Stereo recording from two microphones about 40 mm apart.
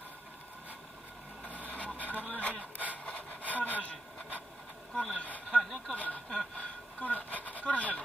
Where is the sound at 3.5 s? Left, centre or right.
Left.